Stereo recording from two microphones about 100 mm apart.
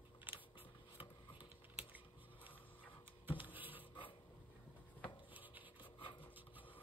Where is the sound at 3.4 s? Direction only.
20° right (ahead or behind).